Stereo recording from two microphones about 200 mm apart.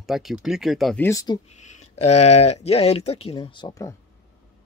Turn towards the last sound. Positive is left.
turn(degrees=15)  # may be behind; listen again after turning